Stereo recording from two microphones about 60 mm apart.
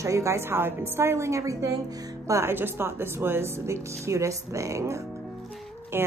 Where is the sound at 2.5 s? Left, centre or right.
Right.